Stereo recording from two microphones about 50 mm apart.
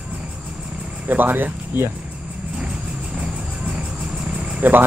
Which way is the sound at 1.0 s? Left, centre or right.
Right.